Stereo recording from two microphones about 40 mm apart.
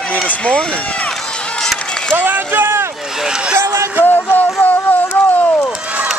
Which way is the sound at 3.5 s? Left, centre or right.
Right.